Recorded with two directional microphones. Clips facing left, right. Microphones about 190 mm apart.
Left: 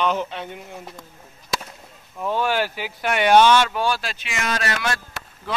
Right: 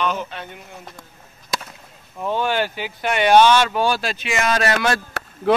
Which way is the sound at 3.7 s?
30° right (ahead or behind).